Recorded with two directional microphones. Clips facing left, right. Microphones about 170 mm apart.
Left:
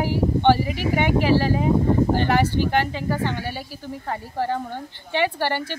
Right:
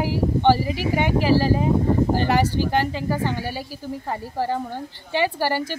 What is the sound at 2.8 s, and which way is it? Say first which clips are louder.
A woman's voice: right 1 dB; 5° right (ahead or behind).